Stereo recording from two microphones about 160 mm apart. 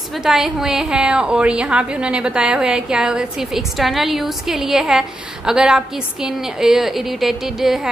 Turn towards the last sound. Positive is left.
turn(degrees=0)  # may be behind; listen again after turning